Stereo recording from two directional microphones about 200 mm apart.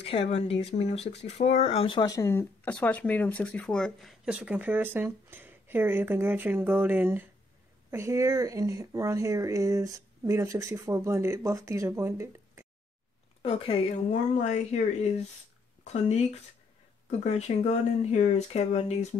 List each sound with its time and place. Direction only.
0.0 s speech: 30° left (ahead or behind); by 12.6 s 15° right (ahead or behind)
13.4 s speech: 30° left (ahead or behind)
17.2 s speech: 35° left (ahead or behind)